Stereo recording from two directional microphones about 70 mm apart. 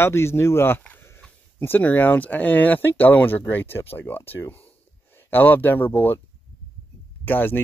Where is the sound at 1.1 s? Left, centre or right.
Left.